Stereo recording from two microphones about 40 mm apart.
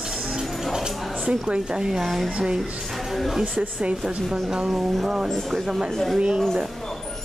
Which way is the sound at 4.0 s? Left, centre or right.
Centre.